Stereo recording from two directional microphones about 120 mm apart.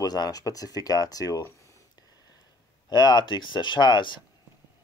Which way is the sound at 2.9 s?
35° left (ahead or behind).